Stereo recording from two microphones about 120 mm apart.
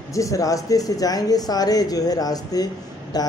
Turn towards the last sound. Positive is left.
turn(degrees=35)  # may be behind; listen again after turning